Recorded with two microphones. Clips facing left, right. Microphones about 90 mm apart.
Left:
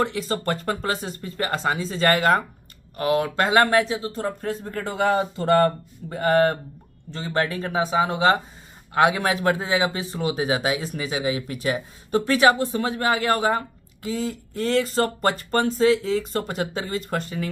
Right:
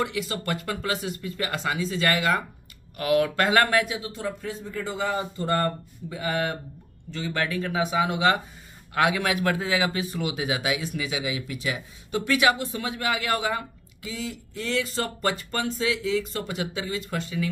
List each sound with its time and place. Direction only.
0.0 s a man's voice: 35° left (ahead or behind)
3.0 s speech: 30° left (ahead or behind); by 5.7 s 70° left (ahead or behind)
6.0 s speech: 45° left (ahead or behind)
7.1 s a man's voice: 35° left (ahead or behind)